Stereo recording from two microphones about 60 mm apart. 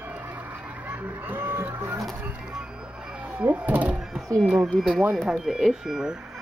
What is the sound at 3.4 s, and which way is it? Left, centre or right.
Speech, right.